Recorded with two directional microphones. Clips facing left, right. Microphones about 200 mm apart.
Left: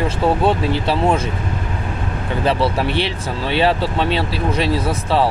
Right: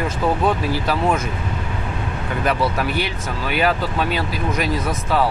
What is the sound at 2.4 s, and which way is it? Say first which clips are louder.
Speech: left 3 dB; 30° left (ahead or behind).